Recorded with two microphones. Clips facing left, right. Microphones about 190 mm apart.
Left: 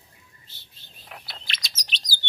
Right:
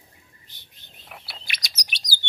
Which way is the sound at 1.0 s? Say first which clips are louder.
Left 1 dB; 5° right (ahead or behind).